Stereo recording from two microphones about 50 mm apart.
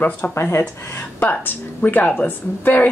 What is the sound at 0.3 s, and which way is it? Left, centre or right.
Speech, left.